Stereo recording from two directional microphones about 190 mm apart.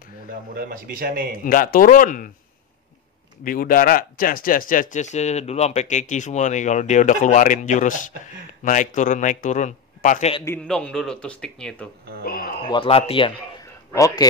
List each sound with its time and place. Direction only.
0.3 s a man's voice: 50° right (ahead or behind)
1.4 s speech: 45° left (ahead or behind)
3.4 s speech: 45° left (ahead or behind)
10.4 s a man's voice: 10° left (ahead or behind)
12.3 s speech: 45° left (ahead or behind)
12.6 s a man's voice: 25° left (ahead or behind)
13.9 s a man's voice: 15° left (ahead or behind)